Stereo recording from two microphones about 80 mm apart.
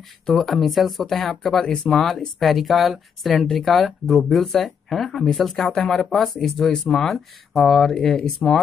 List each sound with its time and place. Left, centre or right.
0.3 s speech: centre